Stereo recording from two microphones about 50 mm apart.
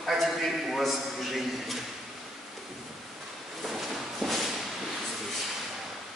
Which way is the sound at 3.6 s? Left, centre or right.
Centre.